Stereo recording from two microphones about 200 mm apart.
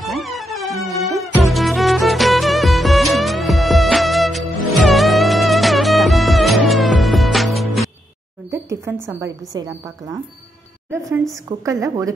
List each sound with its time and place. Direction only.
0.0 s music: centre (ahead or behind)
8.5 s a sound: 15° right (ahead or behind)
9.2 s a woman's voice: 15° right (ahead or behind)
10.9 s a woman's voice: 15° right (ahead or behind)